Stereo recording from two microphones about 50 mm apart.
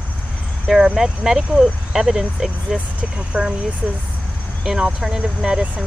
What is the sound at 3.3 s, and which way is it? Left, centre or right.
Speech, right.